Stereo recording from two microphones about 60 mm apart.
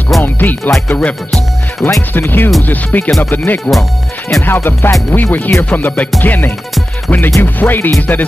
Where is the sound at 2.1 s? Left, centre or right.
Left.